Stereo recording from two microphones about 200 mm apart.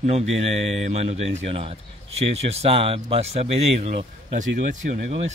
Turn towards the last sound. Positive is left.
turn(degrees=-35)  # may be behind; listen again after turning